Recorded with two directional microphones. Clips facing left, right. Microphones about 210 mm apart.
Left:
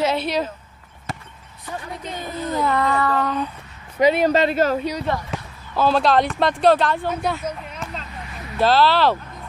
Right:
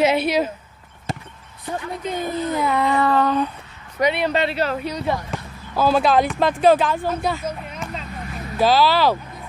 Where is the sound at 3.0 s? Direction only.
30° right (ahead or behind).